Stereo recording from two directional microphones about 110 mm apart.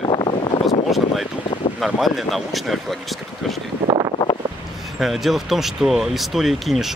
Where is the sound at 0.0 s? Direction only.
50° left (ahead or behind).